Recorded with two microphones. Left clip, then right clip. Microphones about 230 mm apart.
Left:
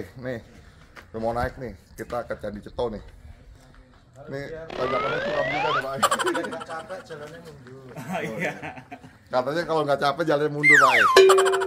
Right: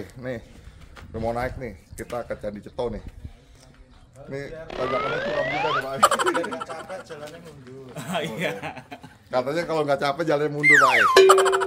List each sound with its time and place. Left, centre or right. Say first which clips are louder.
0.2 s speech: right 1 dB; centre
4.3 s speech: even; centre
7.9 s speech: right 2 dB; right
9.3 s speech: even; centre